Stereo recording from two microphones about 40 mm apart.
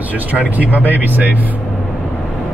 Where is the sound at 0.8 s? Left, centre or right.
Right.